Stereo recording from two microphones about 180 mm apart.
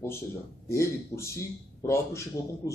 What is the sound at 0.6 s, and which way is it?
A man's voice, 15° left (ahead or behind).